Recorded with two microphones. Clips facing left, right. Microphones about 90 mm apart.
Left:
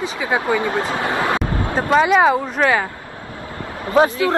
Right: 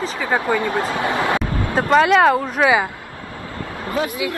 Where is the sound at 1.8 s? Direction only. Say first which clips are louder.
Right 1 dB; 5° left (ahead or behind).